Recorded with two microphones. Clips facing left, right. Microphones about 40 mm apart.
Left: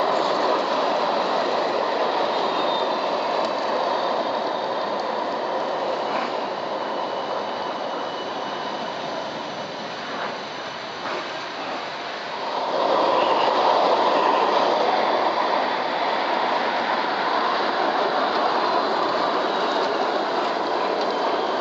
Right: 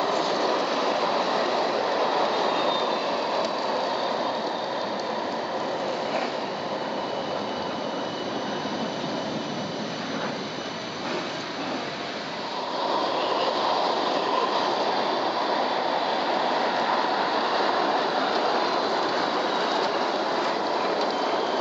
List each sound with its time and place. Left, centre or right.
0.0 s train: centre
12.9 s train: left; by 21.5 s centre